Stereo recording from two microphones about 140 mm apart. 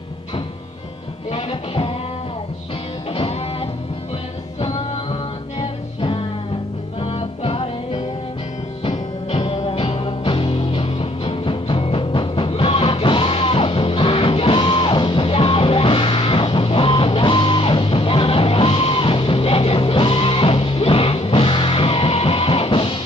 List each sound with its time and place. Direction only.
1.3 s music: 40° left (ahead or behind)
3.1 s music: 45° left (ahead or behind)